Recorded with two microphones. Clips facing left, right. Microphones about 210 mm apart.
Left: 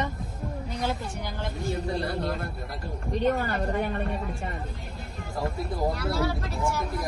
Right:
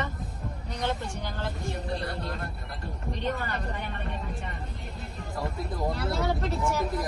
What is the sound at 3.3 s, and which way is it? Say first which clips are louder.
Speech: left 5 dB; 40° left (ahead or behind).